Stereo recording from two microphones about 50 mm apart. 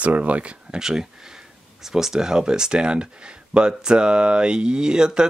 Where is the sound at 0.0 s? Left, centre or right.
Right.